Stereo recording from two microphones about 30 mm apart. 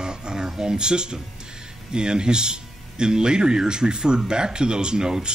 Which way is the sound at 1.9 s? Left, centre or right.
Right.